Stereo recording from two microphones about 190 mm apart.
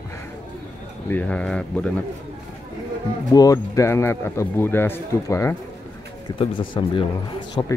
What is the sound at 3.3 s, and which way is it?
A man's voice, 15° left (ahead or behind).